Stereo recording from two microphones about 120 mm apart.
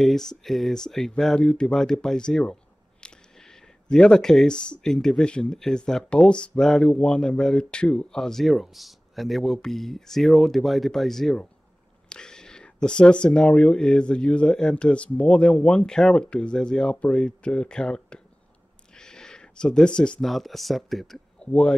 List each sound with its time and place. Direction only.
0.0 s speech: 5° left (ahead or behind)
21.5 s speech: 10° left (ahead or behind)